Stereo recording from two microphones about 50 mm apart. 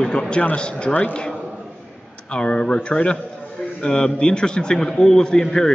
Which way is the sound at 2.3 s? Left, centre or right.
Centre.